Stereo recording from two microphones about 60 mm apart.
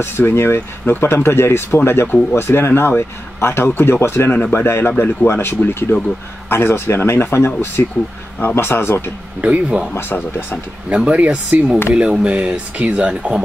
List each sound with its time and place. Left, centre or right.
0.0 s speech: left
5.9 s speech: left
6.5 s speech: left
9.4 s speech: right
9.9 s speech: left
11.1 s speech: right